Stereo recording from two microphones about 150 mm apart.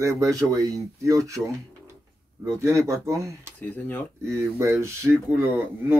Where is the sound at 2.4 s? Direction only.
20° right (ahead or behind).